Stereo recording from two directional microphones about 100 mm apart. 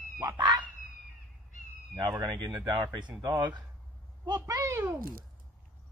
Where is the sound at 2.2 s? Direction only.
40° right (ahead or behind).